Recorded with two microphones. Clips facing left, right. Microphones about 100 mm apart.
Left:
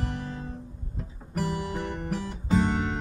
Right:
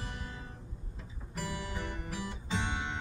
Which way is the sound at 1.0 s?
45° left (ahead or behind).